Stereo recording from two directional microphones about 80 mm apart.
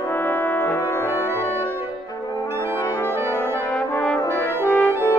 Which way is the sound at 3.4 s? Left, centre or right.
Centre.